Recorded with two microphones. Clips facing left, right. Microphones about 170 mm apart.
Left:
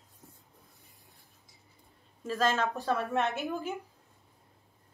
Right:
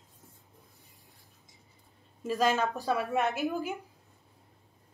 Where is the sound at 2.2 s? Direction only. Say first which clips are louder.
Right 2 dB; 15° right (ahead or behind).